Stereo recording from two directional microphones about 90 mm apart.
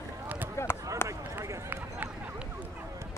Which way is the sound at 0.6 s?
30° left (ahead or behind).